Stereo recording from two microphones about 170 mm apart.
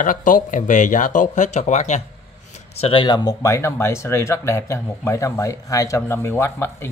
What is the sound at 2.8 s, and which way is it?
Speech, 30° left (ahead or behind).